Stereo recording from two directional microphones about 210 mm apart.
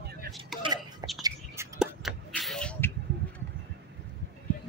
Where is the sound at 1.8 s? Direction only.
Centre (ahead or behind).